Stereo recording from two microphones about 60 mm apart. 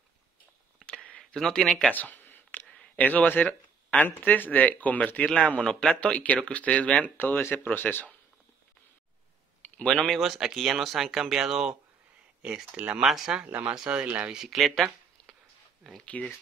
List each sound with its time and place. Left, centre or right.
0.8 s a sound: centre
1.3 s speech: centre
1.9 s a sound: left
3.0 s speech: left; by 5.9 s centre
5.9 s speech: left
7.2 s speech: left
9.9 s speech: centre
12.7 s speech: right
13.0 s speech: centre
13.8 s speech: right
14.3 s speech: centre
16.0 s speech: left